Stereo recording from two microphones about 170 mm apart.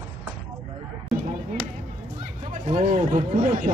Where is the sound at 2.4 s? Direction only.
45° right (ahead or behind).